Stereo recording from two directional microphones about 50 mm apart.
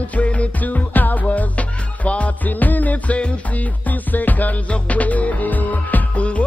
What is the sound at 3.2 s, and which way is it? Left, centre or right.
Music, left.